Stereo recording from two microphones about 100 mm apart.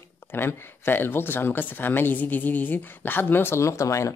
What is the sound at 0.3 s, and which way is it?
Speech, 20° left (ahead or behind).